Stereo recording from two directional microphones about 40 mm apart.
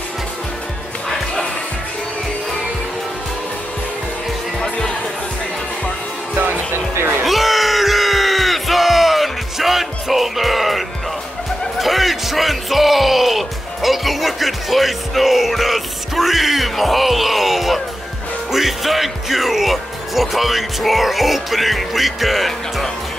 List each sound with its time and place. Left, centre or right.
1.0 s music: centre
4.6 s music: left
6.3 s music: right
7.2 s crowd: centre
11.8 s music: centre
18.5 s speech: centre